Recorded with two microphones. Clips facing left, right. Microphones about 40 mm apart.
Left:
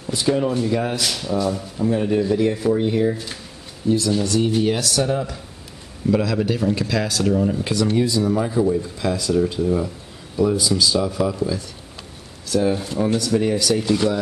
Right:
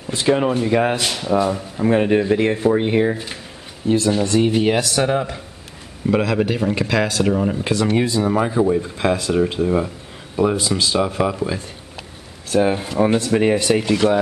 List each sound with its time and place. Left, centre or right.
0.1 s speech: right
1.8 s speech: right